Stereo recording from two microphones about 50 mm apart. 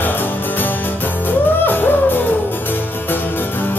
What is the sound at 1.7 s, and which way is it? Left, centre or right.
Music, left.